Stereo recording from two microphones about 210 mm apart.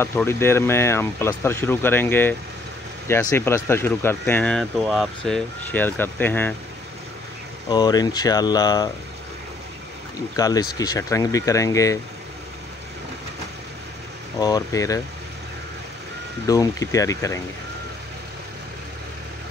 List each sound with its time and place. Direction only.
0.0 s speech: 10° left (ahead or behind)
7.7 s speech: 20° left (ahead or behind)
10.1 s speech: 15° left (ahead or behind)
14.4 s speech: 15° left (ahead or behind)
16.4 s speech: 15° left (ahead or behind)